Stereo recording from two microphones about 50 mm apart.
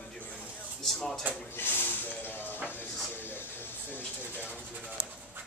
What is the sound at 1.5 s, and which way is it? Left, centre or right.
Speech, left.